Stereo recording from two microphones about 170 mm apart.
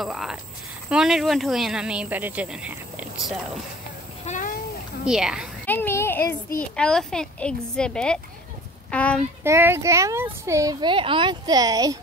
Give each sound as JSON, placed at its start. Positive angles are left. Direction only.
{"t": 0.0, "sound": "a sound", "side_deg": 0}
{"t": 0.8, "sound": "speech", "side_deg": -5}
{"t": 4.3, "sound": "speech", "side_deg": 50}
{"t": 5.0, "sound": "speech", "side_deg": -5}
{"t": 5.7, "sound": "a sound", "side_deg": 10}
{"t": 6.8, "sound": "a child's voice", "side_deg": 5}
{"t": 9.4, "sound": "speech", "side_deg": -15}